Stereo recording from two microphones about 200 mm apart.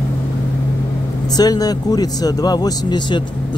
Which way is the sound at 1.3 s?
20° left (ahead or behind).